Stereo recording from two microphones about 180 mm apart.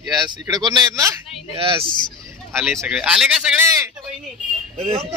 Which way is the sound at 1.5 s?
30° right (ahead or behind).